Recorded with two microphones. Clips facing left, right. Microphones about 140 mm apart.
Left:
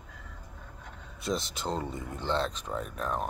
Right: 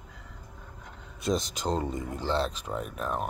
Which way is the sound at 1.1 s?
20° right (ahead or behind).